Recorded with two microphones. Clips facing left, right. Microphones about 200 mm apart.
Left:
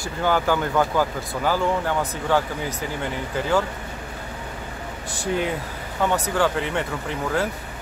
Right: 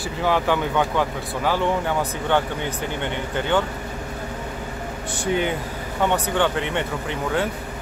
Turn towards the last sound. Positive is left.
turn(degrees=0)  # may be behind; listen again after turning